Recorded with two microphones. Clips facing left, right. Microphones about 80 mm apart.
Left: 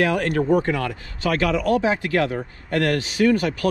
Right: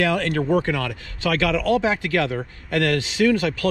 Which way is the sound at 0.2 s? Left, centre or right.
Left.